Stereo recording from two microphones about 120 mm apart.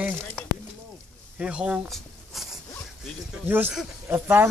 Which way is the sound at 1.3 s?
10° right (ahead or behind).